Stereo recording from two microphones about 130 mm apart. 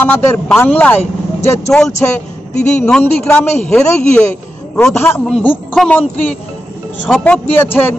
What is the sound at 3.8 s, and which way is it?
A man's voice, 15° left (ahead or behind).